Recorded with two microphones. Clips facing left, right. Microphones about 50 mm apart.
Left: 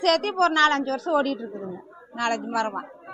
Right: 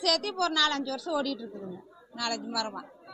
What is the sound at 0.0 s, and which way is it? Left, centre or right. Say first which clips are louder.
Speech: left 8 dB; left.